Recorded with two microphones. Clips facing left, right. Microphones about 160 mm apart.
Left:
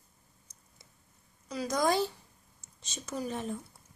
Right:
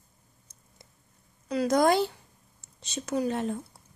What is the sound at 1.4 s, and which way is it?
A woman's voice, 60° right (ahead or behind).